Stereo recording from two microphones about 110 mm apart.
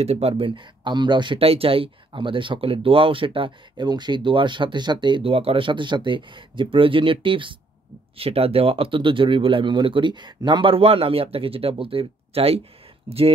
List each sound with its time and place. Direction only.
0.0 s speech: 70° right (ahead or behind); by 7.5 s 50° right (ahead or behind)
8.2 s speech: 60° right (ahead or behind)